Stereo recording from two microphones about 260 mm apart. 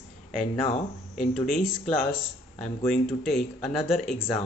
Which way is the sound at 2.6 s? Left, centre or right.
Centre.